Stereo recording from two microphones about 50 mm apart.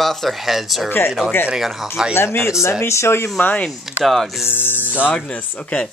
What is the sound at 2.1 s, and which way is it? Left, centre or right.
Speech, left.